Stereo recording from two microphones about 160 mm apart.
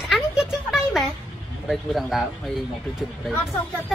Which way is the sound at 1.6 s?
Centre (ahead or behind).